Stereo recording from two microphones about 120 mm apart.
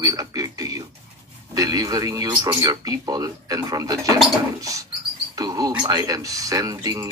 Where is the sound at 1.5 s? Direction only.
30° right (ahead or behind).